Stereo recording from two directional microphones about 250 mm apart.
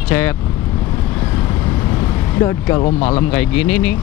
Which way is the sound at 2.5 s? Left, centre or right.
Centre.